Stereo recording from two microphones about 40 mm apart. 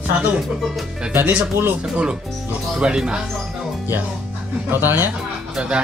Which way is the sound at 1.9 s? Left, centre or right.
Right.